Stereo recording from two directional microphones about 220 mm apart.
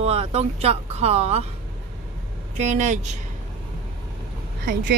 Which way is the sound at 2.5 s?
35° right (ahead or behind).